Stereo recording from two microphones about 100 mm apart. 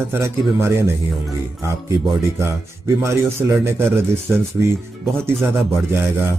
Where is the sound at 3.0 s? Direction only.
30° right (ahead or behind).